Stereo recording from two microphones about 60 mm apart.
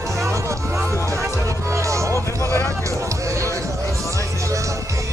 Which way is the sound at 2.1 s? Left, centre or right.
Left.